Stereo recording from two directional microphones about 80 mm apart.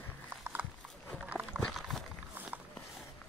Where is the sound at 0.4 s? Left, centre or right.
Right.